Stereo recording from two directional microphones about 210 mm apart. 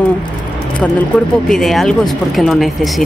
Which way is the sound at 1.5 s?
Centre (ahead or behind).